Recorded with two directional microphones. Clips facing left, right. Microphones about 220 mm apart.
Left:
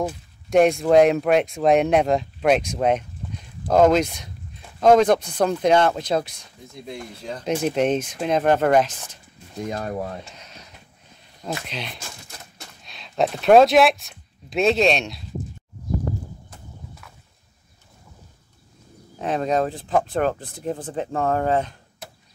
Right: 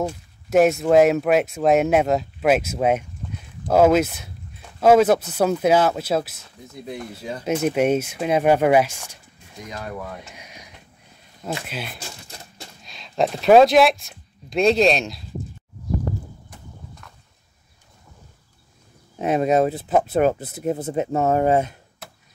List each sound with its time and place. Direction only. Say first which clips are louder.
0.0 s speech: even; 5° right (ahead or behind)
9.7 s speech: left 4 dB; 40° left (ahead or behind)
10.2 s a sound: right 1 dB; 10° right (ahead or behind)
11.6 s speech: right 1 dB; 5° right (ahead or behind)
17.0 s a sound: even; 5° left (ahead or behind)
19.2 s speech: right 4 dB; 10° right (ahead or behind)